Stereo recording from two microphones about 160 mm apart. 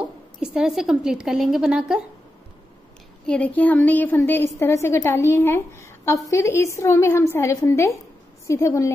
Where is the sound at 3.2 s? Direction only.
5° left (ahead or behind).